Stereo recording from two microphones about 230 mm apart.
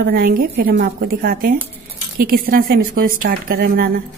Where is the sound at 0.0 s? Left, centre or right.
Right.